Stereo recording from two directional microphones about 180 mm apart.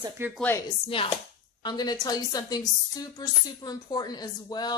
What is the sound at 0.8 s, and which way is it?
A woman's voice, 30° left (ahead or behind).